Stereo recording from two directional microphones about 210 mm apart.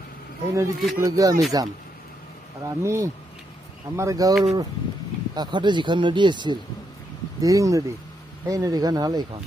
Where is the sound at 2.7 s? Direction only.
15° right (ahead or behind).